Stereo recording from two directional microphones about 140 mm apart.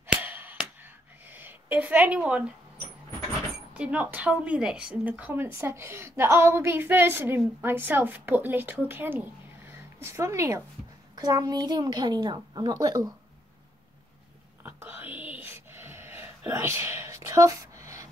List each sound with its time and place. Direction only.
0.0 s a sound: 15° right (ahead or behind)
3.7 s a woman's voice: 10° right (ahead or behind); by 13.1 s 25° right (ahead or behind)
14.6 s whispering: 15° right (ahead or behind)